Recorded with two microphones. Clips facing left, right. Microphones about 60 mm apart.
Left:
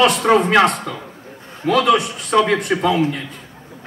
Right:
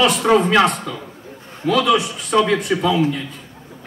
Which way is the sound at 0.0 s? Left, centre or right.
Left.